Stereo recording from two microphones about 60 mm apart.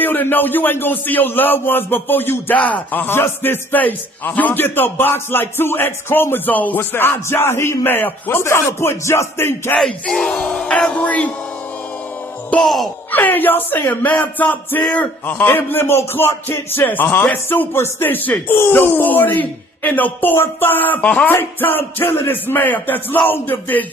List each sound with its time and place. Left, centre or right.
0.0 s speech: left
7.8 s speech: left
8.5 s music: left
9.8 s speech: centre
12.6 s speech: centre
13.1 s speech: left
21.3 s speech: left